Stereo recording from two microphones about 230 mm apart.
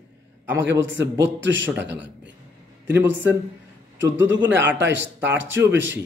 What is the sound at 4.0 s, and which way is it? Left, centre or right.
A man's voice, right.